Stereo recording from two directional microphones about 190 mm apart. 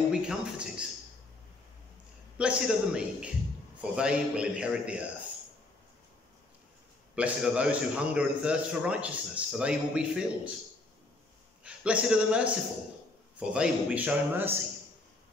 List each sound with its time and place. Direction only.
0.1 s speech: 5° right (ahead or behind)
2.3 s a man's voice: 5° right (ahead or behind)
7.2 s a man's voice: 5° right (ahead or behind)
11.6 s a man's voice: 5° right (ahead or behind)